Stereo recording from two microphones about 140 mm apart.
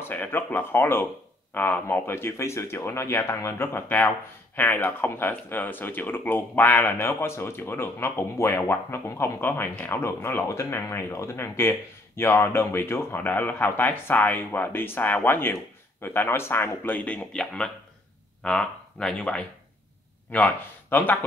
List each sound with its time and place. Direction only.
0.0 s speech: 15° left (ahead or behind)